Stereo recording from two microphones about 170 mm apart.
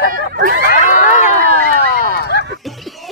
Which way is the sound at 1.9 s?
55° left (ahead or behind).